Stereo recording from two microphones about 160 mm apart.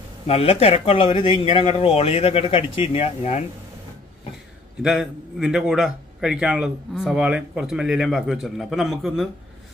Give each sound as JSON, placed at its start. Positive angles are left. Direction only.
{"t": 0.3, "sound": "speech", "side_deg": 40}
{"t": 4.8, "sound": "a man's voice", "side_deg": 0}